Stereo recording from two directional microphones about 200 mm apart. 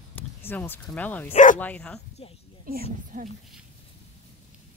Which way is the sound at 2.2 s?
30° left (ahead or behind).